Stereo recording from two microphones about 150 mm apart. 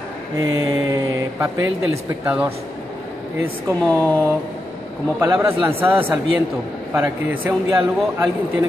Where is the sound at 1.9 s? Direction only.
10° right (ahead or behind).